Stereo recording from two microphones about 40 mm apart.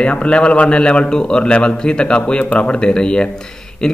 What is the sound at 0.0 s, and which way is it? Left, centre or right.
A man's voice, left.